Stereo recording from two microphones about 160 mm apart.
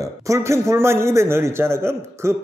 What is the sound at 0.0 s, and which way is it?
A man's voice, 20° right (ahead or behind).